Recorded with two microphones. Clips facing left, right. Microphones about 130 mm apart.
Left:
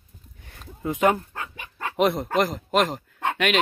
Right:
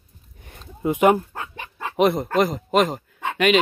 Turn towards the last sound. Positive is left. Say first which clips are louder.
# right 5 dB
turn(degrees=0)  # may be behind; listen again after turning